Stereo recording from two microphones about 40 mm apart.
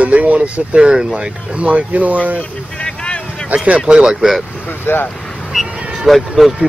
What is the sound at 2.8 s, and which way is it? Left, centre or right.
Vehicle, left.